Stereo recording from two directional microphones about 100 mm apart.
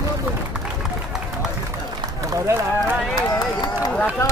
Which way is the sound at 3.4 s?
40° left (ahead or behind).